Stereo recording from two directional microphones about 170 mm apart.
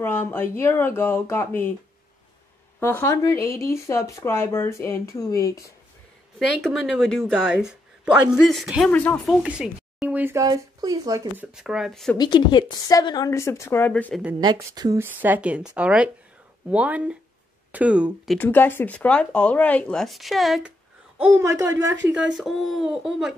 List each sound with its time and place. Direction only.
0.0 s speech: 10° left (ahead or behind)
2.8 s speech: 15° left (ahead or behind)
6.6 s speech: centre (ahead or behind)
9.4 s speech: 5° right (ahead or behind)
11.5 s speech: 5° right (ahead or behind)
12.2 s a woman's voice: 25° left (ahead or behind); by 14.2 s 10° left (ahead or behind)
14.4 s speech: 25° right (ahead or behind); by 18.4 s 5° right (ahead or behind)
18.4 s speech: 10° left (ahead or behind)
21.2 s speech: 15° right (ahead or behind)
22.3 s speech: centre (ahead or behind)